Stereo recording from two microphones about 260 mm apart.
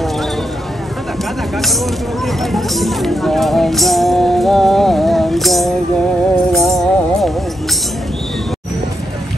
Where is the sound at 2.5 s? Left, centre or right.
Centre.